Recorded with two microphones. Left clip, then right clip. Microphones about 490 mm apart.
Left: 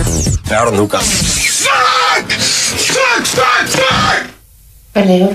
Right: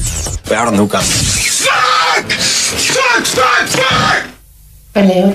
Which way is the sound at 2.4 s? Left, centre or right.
Centre.